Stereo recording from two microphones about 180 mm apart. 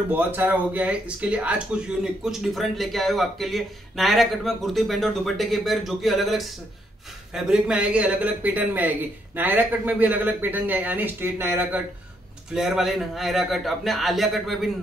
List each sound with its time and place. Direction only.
0.1 s a man's voice: 10° right (ahead or behind)